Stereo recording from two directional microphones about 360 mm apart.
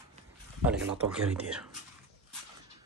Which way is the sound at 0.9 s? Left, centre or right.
Centre.